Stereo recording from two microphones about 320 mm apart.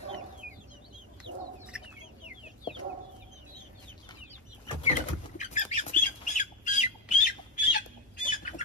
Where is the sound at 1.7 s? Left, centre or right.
Centre.